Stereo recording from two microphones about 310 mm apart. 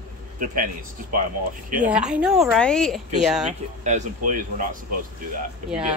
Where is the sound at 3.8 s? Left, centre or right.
Right.